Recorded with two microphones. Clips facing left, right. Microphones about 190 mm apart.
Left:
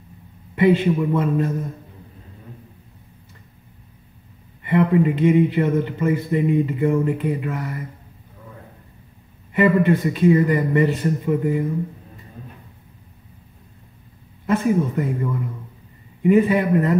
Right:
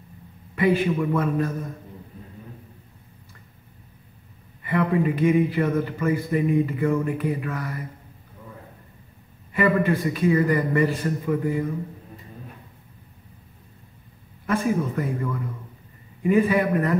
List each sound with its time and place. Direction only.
0.6 s speech: 25° left (ahead or behind)
4.6 s speech: 20° left (ahead or behind)
9.5 s speech: 20° left (ahead or behind)
14.4 s speech: 20° left (ahead or behind)